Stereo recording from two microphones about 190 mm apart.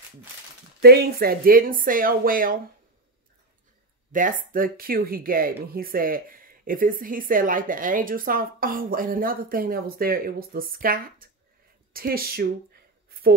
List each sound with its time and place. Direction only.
0.7 s a woman's voice: 55° right (ahead or behind)
4.1 s a woman's voice: 45° right (ahead or behind)
13.1 s a sound: 55° right (ahead or behind)